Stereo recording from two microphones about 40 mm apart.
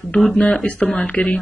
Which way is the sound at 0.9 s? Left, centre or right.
Left.